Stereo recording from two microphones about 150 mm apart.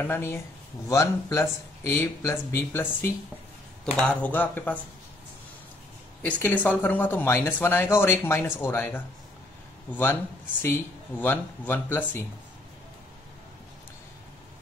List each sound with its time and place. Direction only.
0.0 s speech: 15° left (ahead or behind)
6.2 s speech: 10° left (ahead or behind)